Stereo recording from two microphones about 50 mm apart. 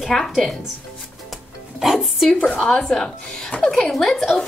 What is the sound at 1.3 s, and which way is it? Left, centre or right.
Music, centre.